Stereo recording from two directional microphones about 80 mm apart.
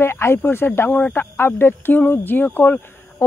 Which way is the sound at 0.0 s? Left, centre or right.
Left.